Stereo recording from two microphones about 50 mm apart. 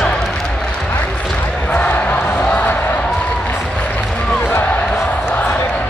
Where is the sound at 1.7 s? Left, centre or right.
Left.